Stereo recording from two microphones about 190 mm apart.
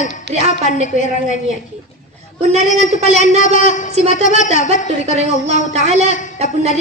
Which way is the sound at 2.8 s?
35° right (ahead or behind).